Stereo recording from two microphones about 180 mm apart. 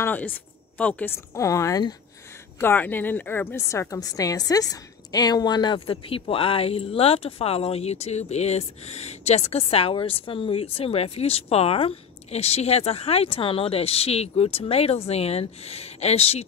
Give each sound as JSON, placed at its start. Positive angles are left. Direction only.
{"t": 0.0, "sound": "speech", "side_deg": 10}
{"t": 2.6, "sound": "a woman's voice", "side_deg": 10}